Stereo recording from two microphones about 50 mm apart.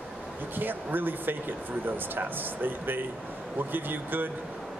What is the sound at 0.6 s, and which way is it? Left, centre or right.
A man's voice, right.